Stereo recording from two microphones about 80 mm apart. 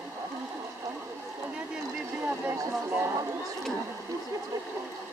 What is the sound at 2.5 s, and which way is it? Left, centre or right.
Speech, right.